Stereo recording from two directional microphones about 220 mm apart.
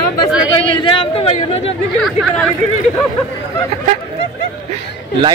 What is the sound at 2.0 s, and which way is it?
Speech, centre (ahead or behind).